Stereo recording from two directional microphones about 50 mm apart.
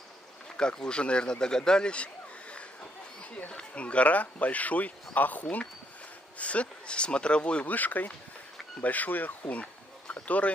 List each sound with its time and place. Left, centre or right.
0.6 s speech: centre
7.6 s speech: left
9.5 s insect: left